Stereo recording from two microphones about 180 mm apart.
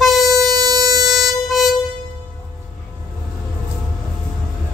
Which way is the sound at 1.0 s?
Centre (ahead or behind).